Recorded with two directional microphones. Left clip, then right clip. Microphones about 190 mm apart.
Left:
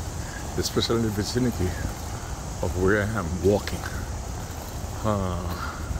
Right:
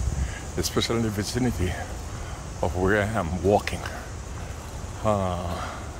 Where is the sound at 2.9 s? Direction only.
15° right (ahead or behind).